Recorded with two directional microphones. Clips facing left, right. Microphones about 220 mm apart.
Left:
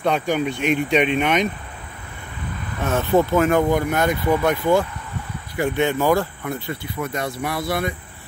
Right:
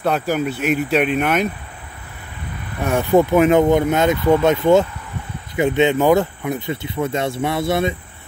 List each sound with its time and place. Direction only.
0.0 s speech: 5° right (ahead or behind)
2.8 s speech: 15° right (ahead or behind)